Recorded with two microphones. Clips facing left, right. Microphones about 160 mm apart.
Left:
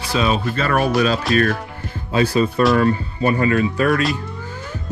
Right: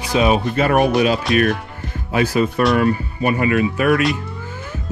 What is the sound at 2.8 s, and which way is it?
Speech, 35° left (ahead or behind).